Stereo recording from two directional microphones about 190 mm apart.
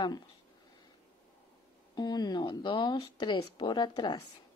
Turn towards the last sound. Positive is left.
turn(degrees=25)  # may be behind; listen again after turning